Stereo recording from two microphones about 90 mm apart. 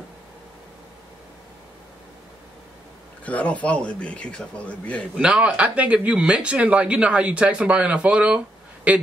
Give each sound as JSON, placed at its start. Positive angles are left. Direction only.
{"t": 3.3, "sound": "speech", "side_deg": 15}
{"t": 5.1, "sound": "speech", "side_deg": -15}